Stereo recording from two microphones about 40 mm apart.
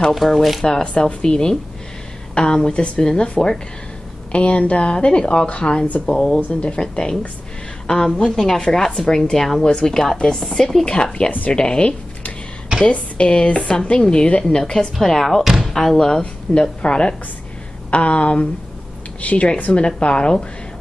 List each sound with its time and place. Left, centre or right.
0.1 s speech: centre
1.0 s a woman's voice: centre
6.5 s a woman's voice: left
10.9 s a woman's voice: left
16.1 s a woman's voice: left